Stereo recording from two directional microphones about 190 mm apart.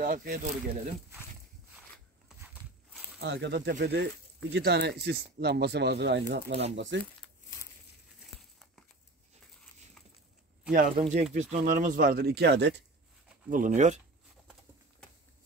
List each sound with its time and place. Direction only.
0.0 s speech: 45° right (ahead or behind)
3.2 s speech: 65° right (ahead or behind)
6.5 s speech: 35° right (ahead or behind)
11.0 s speech: 35° right (ahead or behind); by 12.8 s 65° right (ahead or behind)
13.5 s speech: 40° right (ahead or behind)